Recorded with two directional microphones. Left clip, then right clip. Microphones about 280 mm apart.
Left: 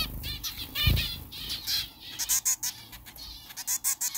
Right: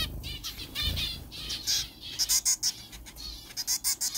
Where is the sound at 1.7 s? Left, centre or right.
Centre.